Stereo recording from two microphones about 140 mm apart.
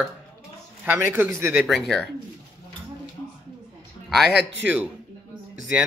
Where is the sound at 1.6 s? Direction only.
Centre (ahead or behind).